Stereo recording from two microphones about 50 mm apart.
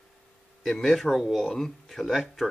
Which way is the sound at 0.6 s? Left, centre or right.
Centre.